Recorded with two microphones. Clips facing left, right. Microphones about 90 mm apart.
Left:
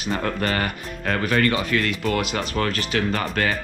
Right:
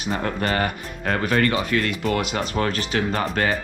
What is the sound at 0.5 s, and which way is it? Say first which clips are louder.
Speech: right 2 dB; 30° right (ahead or behind).